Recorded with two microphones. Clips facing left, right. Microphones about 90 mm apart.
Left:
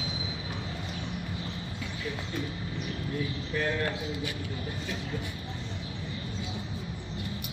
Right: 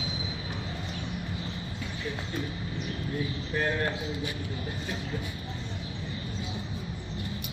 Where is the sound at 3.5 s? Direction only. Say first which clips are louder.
Right 1 dB; 40° right (ahead or behind).